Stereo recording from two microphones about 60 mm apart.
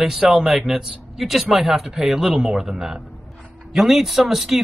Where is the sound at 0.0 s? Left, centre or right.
Centre.